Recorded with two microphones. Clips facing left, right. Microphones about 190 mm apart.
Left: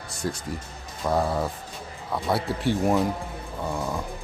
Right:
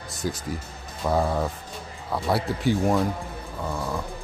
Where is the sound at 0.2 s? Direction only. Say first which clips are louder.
Right 1 dB; centre (ahead or behind).